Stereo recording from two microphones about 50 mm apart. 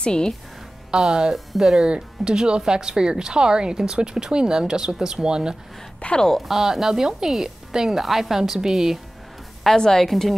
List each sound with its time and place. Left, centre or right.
0.0 s speech: centre
0.9 s speech: centre
5.9 s speech: left
6.2 s speech: centre
6.5 s speech: centre
9.8 s a woman's voice: centre